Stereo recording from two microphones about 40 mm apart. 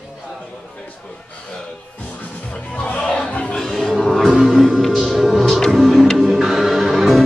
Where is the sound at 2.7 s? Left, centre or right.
Left.